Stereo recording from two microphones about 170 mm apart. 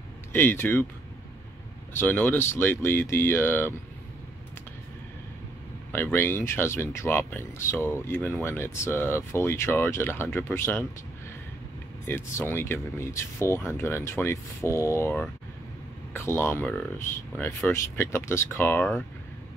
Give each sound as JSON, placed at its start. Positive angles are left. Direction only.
{"t": 0.3, "sound": "speech", "side_deg": 15}
{"t": 2.0, "sound": "speech", "side_deg": 10}
{"t": 5.9, "sound": "speech", "side_deg": 10}
{"t": 12.1, "sound": "speech", "side_deg": 15}